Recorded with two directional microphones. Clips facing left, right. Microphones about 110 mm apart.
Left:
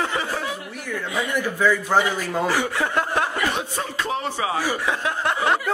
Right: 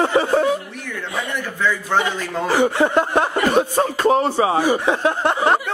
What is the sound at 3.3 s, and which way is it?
Speech, 45° right (ahead or behind).